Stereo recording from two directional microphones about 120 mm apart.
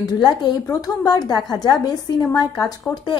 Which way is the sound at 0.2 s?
35° left (ahead or behind).